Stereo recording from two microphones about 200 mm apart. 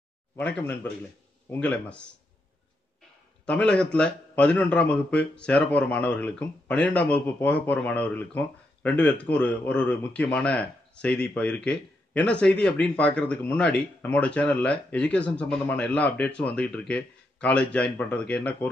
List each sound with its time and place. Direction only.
0.4 s a man's voice: 5° left (ahead or behind)
3.4 s a man's voice: 5° left (ahead or behind)